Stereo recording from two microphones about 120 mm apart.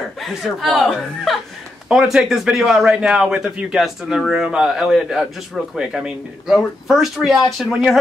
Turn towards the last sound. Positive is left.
turn(degrees=0)  # may be behind; listen again after turning